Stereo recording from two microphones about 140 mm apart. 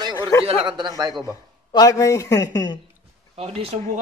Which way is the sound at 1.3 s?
25° left (ahead or behind).